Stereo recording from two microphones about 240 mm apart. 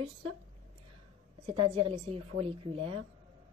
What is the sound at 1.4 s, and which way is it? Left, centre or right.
Speech, right.